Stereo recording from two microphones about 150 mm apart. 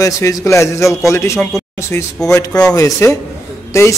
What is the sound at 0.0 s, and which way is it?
A man's voice, 20° left (ahead or behind).